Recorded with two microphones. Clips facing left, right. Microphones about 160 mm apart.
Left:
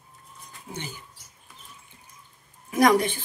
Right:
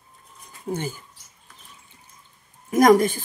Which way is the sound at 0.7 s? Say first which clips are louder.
Right 10 dB; 45° right (ahead or behind).